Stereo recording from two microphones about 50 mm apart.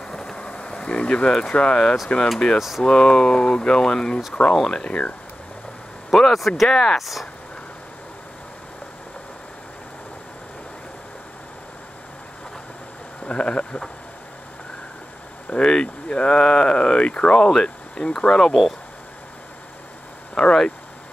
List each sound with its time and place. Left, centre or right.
0.0 s a sound: centre; by 1.2 s left
1.5 s speech: centre
6.1 s speech: centre
6.7 s speech: centre
7.0 s speech: centre
13.2 s speech: left
15.5 s speech: centre
20.3 s speech: centre